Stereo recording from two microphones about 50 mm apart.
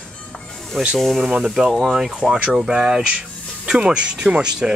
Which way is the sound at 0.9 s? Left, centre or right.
Centre.